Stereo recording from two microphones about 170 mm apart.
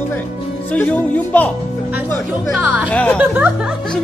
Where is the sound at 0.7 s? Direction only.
10° left (ahead or behind).